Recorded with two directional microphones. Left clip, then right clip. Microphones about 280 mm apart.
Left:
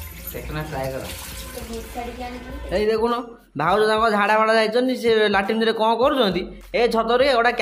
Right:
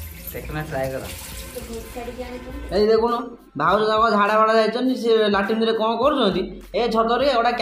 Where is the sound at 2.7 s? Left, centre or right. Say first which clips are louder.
Right 2 dB; left.